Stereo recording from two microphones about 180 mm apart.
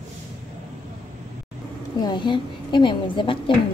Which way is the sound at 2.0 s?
25° left (ahead or behind).